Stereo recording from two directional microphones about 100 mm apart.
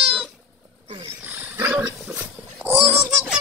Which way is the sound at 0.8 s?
70° right (ahead or behind).